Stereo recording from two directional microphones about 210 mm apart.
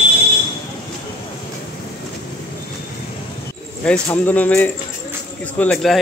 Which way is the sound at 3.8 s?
5° left (ahead or behind).